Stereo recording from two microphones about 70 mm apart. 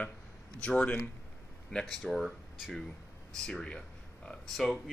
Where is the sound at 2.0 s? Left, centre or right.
Centre.